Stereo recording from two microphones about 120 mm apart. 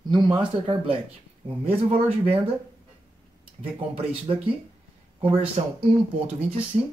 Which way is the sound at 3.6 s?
50° right (ahead or behind).